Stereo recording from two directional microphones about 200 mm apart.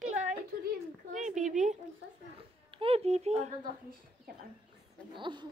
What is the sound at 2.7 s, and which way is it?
Speech, 30° right (ahead or behind).